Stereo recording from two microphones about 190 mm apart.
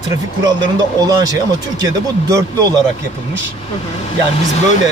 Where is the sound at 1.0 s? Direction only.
20° right (ahead or behind).